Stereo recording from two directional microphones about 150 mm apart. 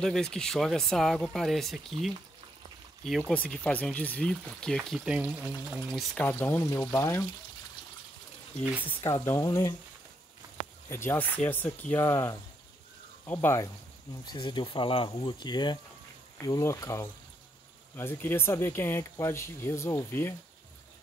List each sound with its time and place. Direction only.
0.0 s speech: 5° left (ahead or behind)
5.9 s speech: 5° left (ahead or behind)
9.0 s speech: 15° left (ahead or behind)
10.9 s speech: 15° left (ahead or behind)
14.2 s speech: 30° left (ahead or behind)